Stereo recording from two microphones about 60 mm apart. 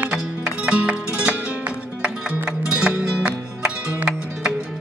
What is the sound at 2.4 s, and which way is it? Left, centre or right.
Music, right.